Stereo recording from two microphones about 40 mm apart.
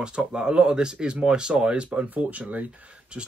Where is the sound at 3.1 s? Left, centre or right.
Right.